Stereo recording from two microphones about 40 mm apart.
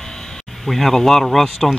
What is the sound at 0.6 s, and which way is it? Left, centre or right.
Speech, centre.